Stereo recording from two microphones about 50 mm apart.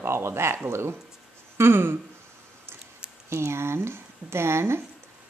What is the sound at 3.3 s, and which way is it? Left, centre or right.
Speech, right.